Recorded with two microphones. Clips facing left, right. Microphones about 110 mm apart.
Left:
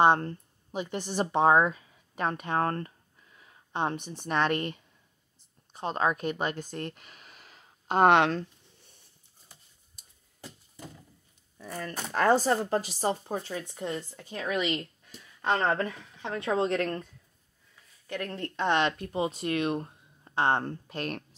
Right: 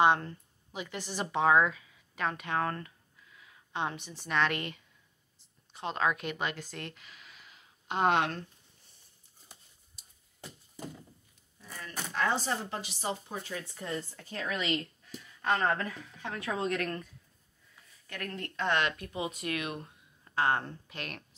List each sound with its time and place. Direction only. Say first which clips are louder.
0.0 s speech: left 3 dB; 45° left (ahead or behind)
0.7 s a woman's voice: left 6 dB; 30° left (ahead or behind)
8.1 s speech: left 5 dB; 75° left (ahead or behind)
11.6 s a sound: left 9 dB; 50° left (ahead or behind)
12.1 s speech: left 8 dB; 45° left (ahead or behind); by 20.6 s 30° left (ahead or behind)
20.6 s speech: left 8 dB; 40° left (ahead or behind)